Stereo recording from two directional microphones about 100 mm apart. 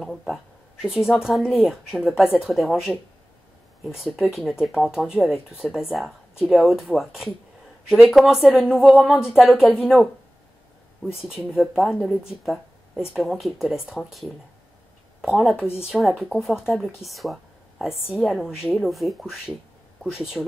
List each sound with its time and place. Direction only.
0.0 s speech: centre (ahead or behind)
11.1 s speech: 5° right (ahead or behind)
15.5 s speech: 25° left (ahead or behind)
15.9 s speech: centre (ahead or behind)